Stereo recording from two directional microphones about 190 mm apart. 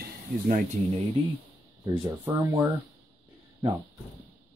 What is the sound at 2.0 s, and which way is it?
Speech, 10° right (ahead or behind).